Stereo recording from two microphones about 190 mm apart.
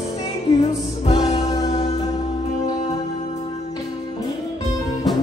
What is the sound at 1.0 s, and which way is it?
Music, 25° left (ahead or behind).